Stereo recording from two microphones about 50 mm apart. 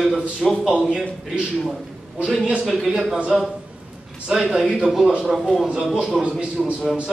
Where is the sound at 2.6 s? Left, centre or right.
Centre.